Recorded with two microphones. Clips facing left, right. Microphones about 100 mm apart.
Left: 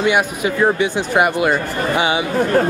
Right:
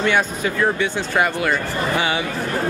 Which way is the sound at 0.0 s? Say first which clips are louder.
Left 3 dB; 15° left (ahead or behind).